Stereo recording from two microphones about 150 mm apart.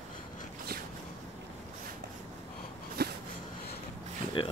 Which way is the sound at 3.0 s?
90° right.